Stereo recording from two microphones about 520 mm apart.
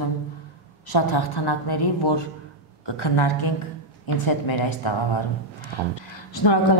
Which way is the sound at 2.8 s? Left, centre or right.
Left.